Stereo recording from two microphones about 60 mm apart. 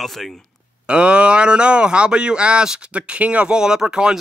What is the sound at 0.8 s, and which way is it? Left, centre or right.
Speech, centre.